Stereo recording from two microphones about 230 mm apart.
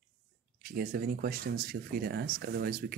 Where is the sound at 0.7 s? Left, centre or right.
Right.